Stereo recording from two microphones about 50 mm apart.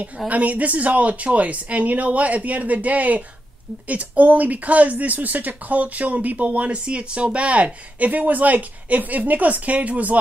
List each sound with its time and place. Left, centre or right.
0.3 s speech: right